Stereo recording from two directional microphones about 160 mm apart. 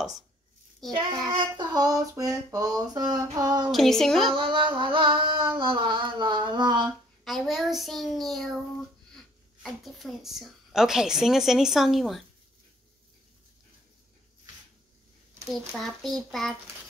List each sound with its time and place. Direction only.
0.9 s child singing: 30° right (ahead or behind)
3.7 s a child's voice: centre (ahead or behind)
4.4 s a sound: 30° right (ahead or behind)
7.2 s a child's voice: centre (ahead or behind)
15.4 s a child's voice: centre (ahead or behind)